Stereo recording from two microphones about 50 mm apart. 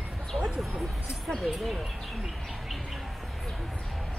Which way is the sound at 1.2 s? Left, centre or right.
Centre.